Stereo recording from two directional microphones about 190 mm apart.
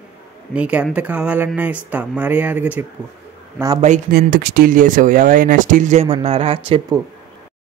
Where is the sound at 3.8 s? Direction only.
40° right (ahead or behind).